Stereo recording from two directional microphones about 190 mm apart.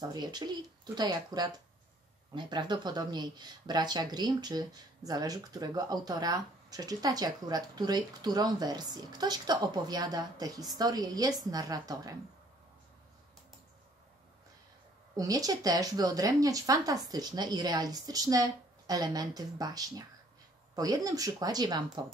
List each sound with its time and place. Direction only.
0.0 s speech: 20° right (ahead or behind)
15.1 s speech: 20° right (ahead or behind)